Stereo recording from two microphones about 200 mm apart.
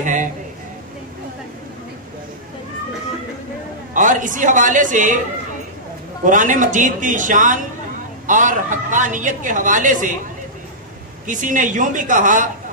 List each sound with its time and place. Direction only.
0.0 s a man's voice: 40° right (ahead or behind)
3.9 s a woman's voice: 40° right (ahead or behind)
6.2 s a woman's voice: 40° right (ahead or behind)
11.2 s a woman's voice: 40° right (ahead or behind)